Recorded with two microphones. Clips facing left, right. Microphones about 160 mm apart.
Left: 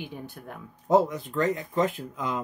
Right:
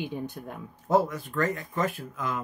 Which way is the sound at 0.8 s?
20° left (ahead or behind).